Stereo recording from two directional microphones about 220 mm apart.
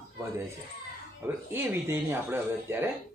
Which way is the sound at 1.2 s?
10° right (ahead or behind).